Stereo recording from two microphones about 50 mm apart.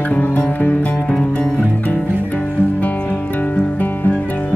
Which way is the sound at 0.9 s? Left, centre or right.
Centre.